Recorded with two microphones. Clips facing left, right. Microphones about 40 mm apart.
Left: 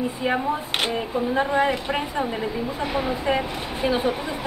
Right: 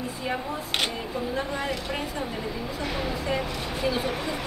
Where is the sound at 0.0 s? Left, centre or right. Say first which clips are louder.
Left 7 dB; left.